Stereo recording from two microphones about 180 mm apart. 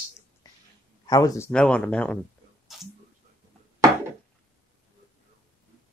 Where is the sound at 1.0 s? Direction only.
20° left (ahead or behind).